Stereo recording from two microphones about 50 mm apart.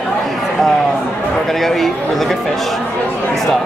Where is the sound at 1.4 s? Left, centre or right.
Centre.